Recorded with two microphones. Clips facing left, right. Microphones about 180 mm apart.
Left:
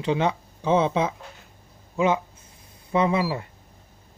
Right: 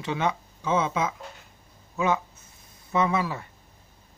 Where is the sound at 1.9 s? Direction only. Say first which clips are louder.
Left 3 dB; 25° left (ahead or behind).